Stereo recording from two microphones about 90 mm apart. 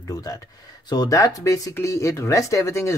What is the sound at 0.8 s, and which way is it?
Speech, 45° left (ahead or behind).